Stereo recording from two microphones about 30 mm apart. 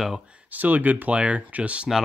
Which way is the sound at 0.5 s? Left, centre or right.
Right.